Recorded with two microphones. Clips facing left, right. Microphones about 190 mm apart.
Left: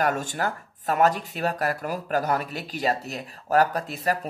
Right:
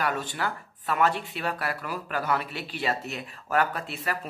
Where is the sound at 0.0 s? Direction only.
45° left (ahead or behind).